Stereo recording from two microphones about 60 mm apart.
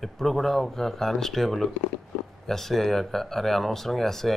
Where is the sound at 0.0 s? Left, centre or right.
Centre.